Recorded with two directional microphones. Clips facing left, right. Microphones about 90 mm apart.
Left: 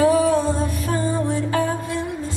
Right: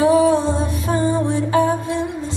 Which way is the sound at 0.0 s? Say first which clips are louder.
Right 2 dB; 20° right (ahead or behind).